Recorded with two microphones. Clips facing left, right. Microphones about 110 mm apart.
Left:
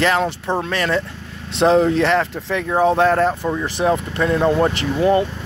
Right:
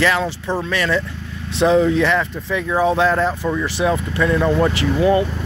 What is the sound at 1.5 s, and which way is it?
Speech, 65° left (ahead or behind).